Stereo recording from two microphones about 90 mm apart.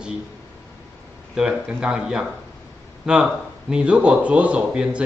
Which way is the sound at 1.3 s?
10° right (ahead or behind).